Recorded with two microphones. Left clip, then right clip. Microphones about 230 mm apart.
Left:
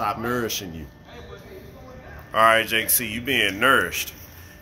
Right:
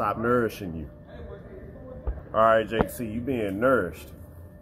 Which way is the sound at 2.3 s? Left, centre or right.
Left.